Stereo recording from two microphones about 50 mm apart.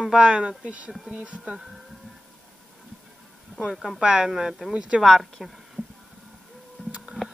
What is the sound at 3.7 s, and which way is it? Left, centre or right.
Speech, centre.